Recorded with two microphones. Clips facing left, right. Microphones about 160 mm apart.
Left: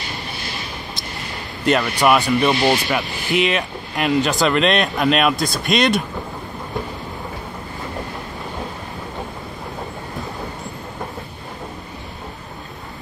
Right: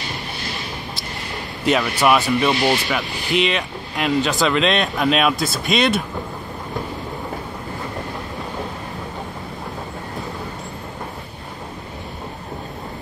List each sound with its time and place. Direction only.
1.7 s speech: centre (ahead or behind)